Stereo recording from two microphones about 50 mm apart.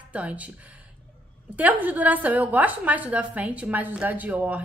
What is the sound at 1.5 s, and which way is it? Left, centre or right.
A woman's voice, right.